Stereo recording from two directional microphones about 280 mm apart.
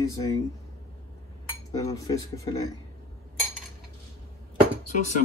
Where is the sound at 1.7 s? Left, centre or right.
Centre.